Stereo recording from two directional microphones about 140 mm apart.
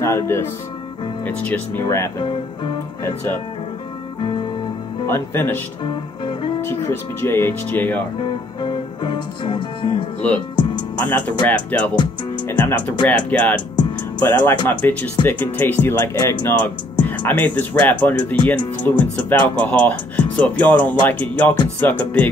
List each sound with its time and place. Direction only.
0.0 s speech: 20° left (ahead or behind)
4.2 s music: 35° left (ahead or behind)
5.0 s speech: 15° left (ahead or behind)
6.6 s speech: 15° left (ahead or behind)
8.2 s music: 35° left (ahead or behind)
11.0 s speech: 10° left (ahead or behind)